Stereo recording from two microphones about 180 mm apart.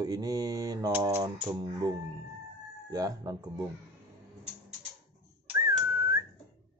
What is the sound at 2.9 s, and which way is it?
Speech, 20° right (ahead or behind).